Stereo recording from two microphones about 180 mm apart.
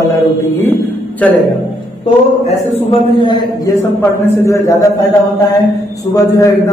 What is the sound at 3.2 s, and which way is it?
Speech, 25° left (ahead or behind).